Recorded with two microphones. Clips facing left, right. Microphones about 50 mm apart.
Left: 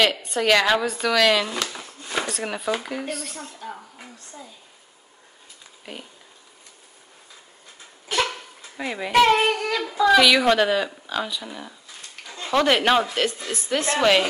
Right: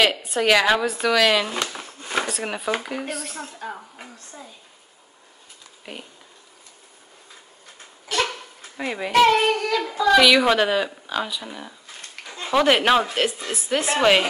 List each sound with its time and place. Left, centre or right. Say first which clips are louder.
0.0 s speech: right 1 dB; centre
1.7 s a sound: right 2 dB; centre
2.2 s speech: even; centre
3.5 s speech: right 2 dB; centre
5.9 s speech: right 1 dB; centre
8.7 s speech: even; centre
9.3 s a woman's voice: right 1 dB; centre